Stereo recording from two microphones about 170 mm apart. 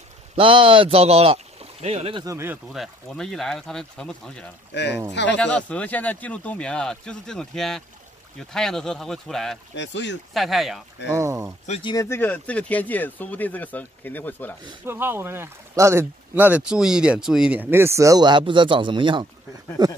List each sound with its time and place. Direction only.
0.4 s speech: 30° right (ahead or behind)
2.2 s speech: 15° right (ahead or behind)
2.7 s speech: centre (ahead or behind)
5.1 s speech: 90° left
5.4 s speech: 5° left (ahead or behind)
9.8 s speech: 90° left
10.3 s speech: centre (ahead or behind)
11.1 s speech: 15° right (ahead or behind)
11.8 s speech: 20° left (ahead or behind)
14.9 s speech: 15° right (ahead or behind)